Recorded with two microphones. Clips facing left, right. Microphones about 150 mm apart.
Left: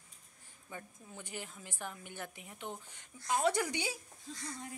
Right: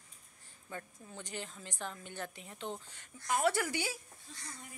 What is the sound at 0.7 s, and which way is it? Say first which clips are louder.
A woman's voice: right 2 dB; 10° left (ahead or behind).